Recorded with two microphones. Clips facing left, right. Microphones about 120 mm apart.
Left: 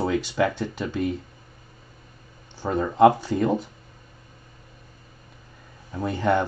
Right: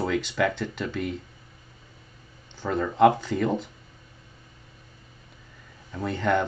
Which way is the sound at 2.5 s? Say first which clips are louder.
Left 2 dB; 15° left (ahead or behind).